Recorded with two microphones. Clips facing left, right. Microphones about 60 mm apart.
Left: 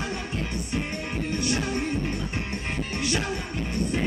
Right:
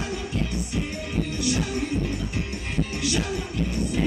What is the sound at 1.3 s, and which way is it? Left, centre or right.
Music, left.